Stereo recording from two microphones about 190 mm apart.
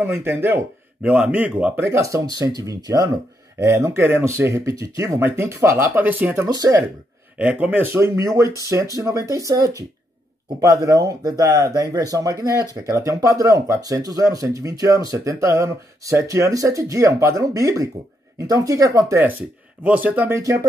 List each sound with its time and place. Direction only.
0.0 s speech: 10° right (ahead or behind)
7.3 s speech: 5° right (ahead or behind)